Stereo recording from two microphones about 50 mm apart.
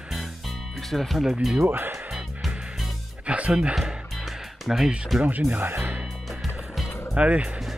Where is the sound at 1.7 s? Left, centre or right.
Right.